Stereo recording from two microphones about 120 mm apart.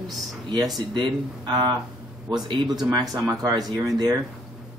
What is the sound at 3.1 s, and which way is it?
Speech, 30° right (ahead or behind).